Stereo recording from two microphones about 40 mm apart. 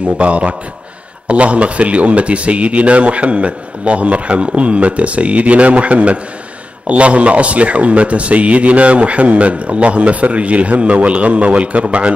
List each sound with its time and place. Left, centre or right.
0.0 s a man's voice: right